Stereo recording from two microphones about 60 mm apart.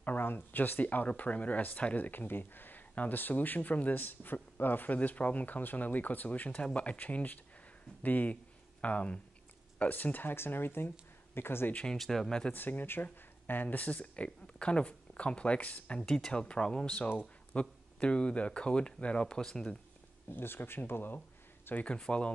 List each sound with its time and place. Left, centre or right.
0.0 s speech: left
11.7 s speech: centre
12.5 s speech: left
16.1 s speech: centre
20.2 s speech: left
21.8 s speech: centre